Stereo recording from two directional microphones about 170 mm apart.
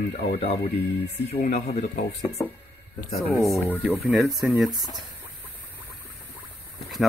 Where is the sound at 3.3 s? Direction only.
15° left (ahead or behind).